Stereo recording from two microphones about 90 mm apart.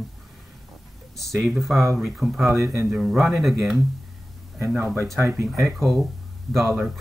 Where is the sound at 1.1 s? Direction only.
Centre (ahead or behind).